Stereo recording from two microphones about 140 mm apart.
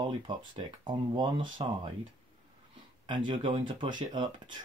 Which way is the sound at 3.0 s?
35° right (ahead or behind).